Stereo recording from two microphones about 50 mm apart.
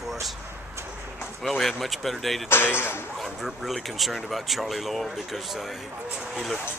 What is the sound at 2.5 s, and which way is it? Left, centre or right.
Speech, left.